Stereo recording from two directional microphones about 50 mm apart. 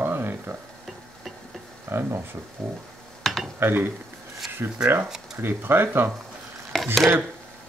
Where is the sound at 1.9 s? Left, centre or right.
Right.